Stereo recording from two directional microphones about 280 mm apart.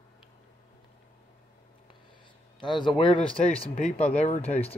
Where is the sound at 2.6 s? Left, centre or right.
Centre.